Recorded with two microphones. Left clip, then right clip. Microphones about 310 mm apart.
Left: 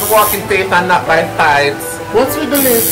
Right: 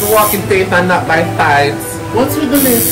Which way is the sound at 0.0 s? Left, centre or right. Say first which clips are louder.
Even; centre.